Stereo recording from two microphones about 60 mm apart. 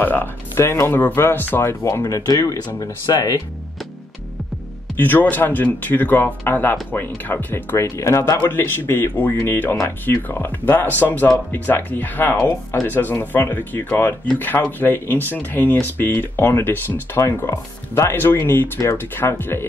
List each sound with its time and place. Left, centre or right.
0.0 s speech: left
0.6 s speech: left
1.6 s speech: left
2.0 s speech: left
4.9 s speech: left
8.0 s speech: left
8.4 s speech: left
17.5 s speech: left
18.1 s speech: left